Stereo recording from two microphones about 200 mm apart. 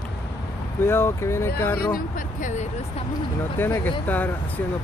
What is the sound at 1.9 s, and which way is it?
Speech, 40° left (ahead or behind).